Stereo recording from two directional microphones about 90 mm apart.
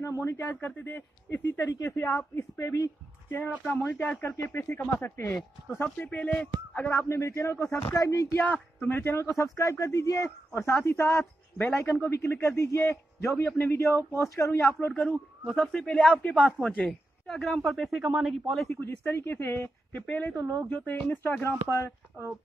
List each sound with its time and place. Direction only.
0.0 s a sound: 35° left (ahead or behind)
0.4 s speech: 20° left (ahead or behind)
1.8 s speech: 35° left (ahead or behind)
5.9 s speech: 15° left (ahead or behind)
6.9 s speech: 30° left (ahead or behind)
8.8 s speech: 25° left (ahead or behind)
14.9 s speech: 10° left (ahead or behind)
18.8 s speech: 25° left (ahead or behind)
20.3 s speech: 35° right (ahead or behind)
20.7 s speech: 15° left (ahead or behind)
22.2 s speech: 30° right (ahead or behind)